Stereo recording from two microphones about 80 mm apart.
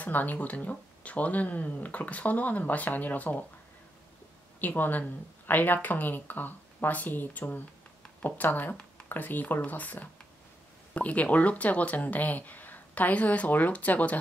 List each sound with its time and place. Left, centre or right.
0.0 s speech: left
4.6 s speech: left